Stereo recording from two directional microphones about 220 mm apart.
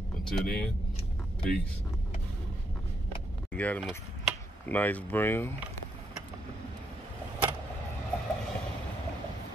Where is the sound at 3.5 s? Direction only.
5° left (ahead or behind).